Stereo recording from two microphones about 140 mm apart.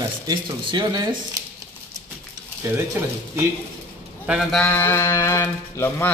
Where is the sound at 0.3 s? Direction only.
35° right (ahead or behind).